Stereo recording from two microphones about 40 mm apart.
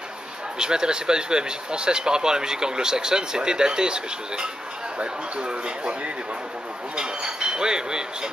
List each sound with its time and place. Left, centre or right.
0.6 s speech: centre